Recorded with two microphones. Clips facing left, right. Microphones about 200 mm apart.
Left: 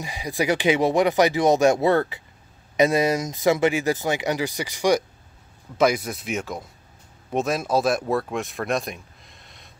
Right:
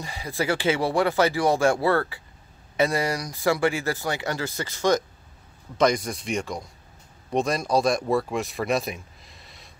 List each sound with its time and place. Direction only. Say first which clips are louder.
0.0 s speech: left 3 dB; 15° left (ahead or behind); by 9.7 s centre (ahead or behind)